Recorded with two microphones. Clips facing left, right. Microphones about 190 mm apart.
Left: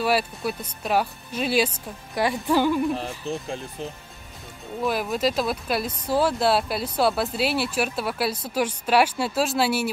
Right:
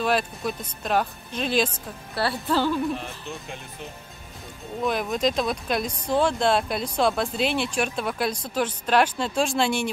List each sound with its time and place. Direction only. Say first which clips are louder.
0.0 s speech: left 1 dB; 10° left (ahead or behind)
2.9 s speech: left 4 dB; 35° left (ahead or behind)
4.8 s speech: even; 5° left (ahead or behind)